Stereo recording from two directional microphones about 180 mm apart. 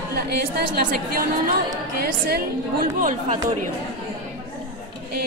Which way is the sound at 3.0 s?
45° right (ahead or behind).